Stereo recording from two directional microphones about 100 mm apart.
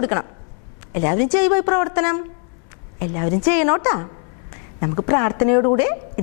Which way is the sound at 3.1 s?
25° left (ahead or behind).